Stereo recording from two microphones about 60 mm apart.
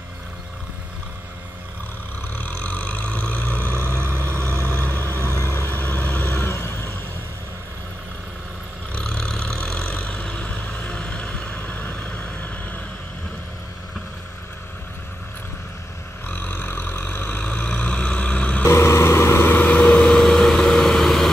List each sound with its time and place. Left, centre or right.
2.2 s vehicle: left
3.9 s vehicle: right
4.7 s vehicle: left
5.7 s vehicle: left
9.0 s vehicle: centre; by 12.8 s left
16.3 s vehicle: left
17.4 s vehicle: centre
18.7 s vehicle: left; by 21.3 s centre